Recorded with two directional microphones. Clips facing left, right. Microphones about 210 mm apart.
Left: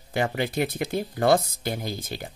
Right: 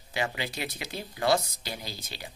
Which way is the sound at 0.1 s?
50° left (ahead or behind).